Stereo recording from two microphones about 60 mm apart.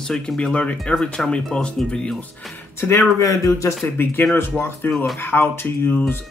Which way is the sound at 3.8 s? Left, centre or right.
Left.